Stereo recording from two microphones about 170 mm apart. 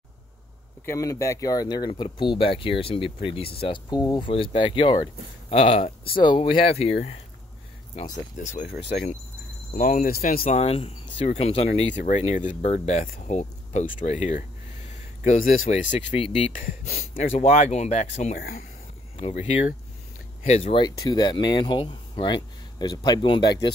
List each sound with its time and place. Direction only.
0.8 s speech: 20° left (ahead or behind); by 7.2 s 35° left (ahead or behind)
8.4 s speech: 45° left (ahead or behind)
10.4 s speech: 35° left (ahead or behind)
14.9 s a sound: 45° left (ahead or behind)
16.1 s speech: 45° left (ahead or behind)
17.2 s speech: 45° left (ahead or behind)
18.4 s speech: 65° left (ahead or behind)
19.1 s speech: 40° left (ahead or behind)